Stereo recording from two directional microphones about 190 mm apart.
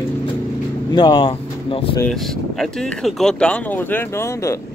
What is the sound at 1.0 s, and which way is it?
Speech, 25° left (ahead or behind).